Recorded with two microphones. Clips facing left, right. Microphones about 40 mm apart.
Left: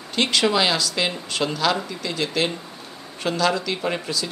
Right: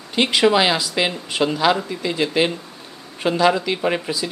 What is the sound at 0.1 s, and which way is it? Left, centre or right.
Speech, centre.